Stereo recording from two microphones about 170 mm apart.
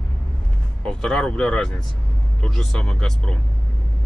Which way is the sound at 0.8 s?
5° left (ahead or behind).